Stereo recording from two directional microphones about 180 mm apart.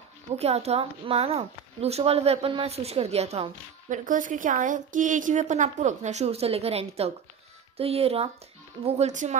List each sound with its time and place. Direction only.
0.4 s speech: 35° right (ahead or behind)
3.9 s a woman's voice: 45° right (ahead or behind)